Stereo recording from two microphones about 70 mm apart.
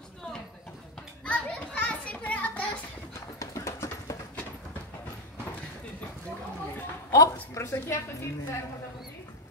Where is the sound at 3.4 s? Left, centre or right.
Left.